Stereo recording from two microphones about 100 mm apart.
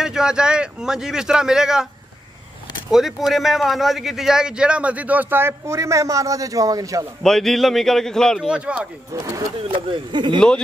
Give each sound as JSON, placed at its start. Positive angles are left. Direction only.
{"t": 0.0, "sound": "a man's voice", "side_deg": -5}
{"t": 2.9, "sound": "a man's voice", "side_deg": -5}
{"t": 7.2, "sound": "a man's voice", "side_deg": 5}
{"t": 8.5, "sound": "a man's voice", "side_deg": -10}
{"t": 9.8, "sound": "speech", "side_deg": -55}